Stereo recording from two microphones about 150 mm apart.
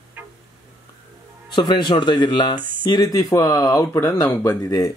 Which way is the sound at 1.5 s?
30° left (ahead or behind).